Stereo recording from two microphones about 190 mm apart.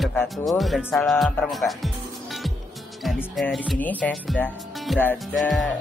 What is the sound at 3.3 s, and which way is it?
Speech, centre (ahead or behind).